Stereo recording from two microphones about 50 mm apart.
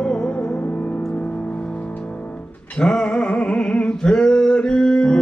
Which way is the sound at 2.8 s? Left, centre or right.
Centre.